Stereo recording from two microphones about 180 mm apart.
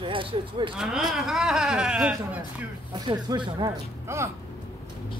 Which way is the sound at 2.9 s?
25° right (ahead or behind).